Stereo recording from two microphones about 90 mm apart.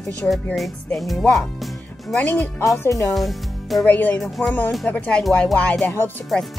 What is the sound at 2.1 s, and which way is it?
Speech, 15° left (ahead or behind).